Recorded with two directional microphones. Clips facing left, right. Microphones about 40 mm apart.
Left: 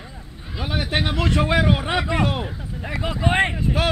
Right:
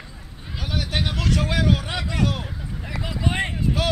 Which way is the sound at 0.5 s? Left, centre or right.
Left.